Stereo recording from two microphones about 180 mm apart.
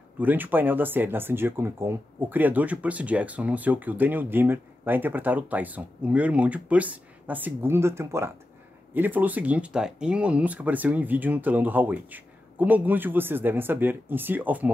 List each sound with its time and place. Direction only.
0.2 s speech: 10° right (ahead or behind)